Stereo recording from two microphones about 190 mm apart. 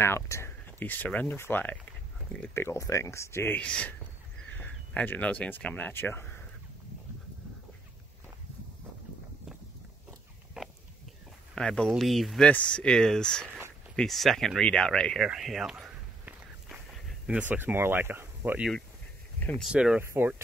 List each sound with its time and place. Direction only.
0.0 s speech: 15° left (ahead or behind)
10.6 s a sound: 5° right (ahead or behind)
11.5 s speech: 5° left (ahead or behind)
19.4 s speech: centre (ahead or behind)